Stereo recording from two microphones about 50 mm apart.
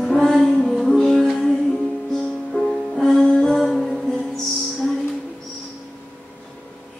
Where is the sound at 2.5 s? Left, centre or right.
Centre.